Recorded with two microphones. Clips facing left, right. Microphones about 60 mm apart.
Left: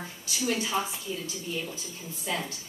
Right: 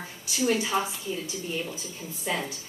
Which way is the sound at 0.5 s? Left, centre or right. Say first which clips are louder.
Right 3 dB; centre.